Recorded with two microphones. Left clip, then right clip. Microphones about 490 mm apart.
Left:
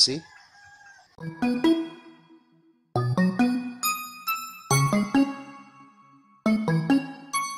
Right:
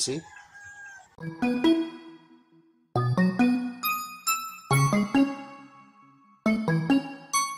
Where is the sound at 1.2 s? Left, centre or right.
Centre.